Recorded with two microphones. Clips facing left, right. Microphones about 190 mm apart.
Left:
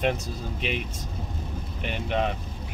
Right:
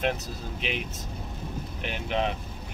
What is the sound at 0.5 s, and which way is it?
Speech, 45° left (ahead or behind).